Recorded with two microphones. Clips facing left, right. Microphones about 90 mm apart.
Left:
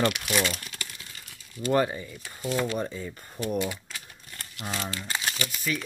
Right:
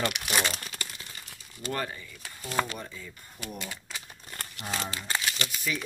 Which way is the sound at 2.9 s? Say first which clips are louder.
Left 8 dB; 45° left (ahead or behind).